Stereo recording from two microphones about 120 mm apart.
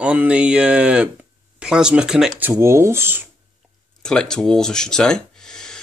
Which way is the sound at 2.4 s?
20° right (ahead or behind).